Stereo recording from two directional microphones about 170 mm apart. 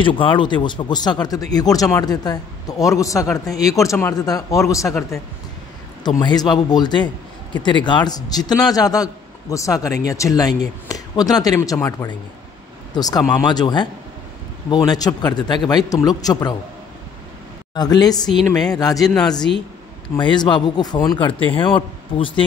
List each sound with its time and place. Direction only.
0.0 s a man's voice: 30° left (ahead or behind)
17.7 s a man's voice: 25° left (ahead or behind)
18.9 s speech: centre (ahead or behind)
20.2 s a man's voice: 25° left (ahead or behind)